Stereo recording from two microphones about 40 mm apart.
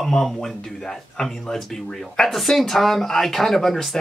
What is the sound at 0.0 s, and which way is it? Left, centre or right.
Speech, centre.